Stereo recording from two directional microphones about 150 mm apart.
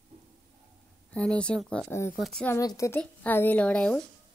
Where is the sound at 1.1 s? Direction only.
5° left (ahead or behind).